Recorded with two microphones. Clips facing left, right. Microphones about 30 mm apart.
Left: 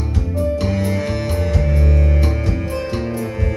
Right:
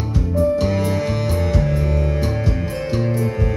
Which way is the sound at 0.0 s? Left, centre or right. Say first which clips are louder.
Right 3 dB; centre.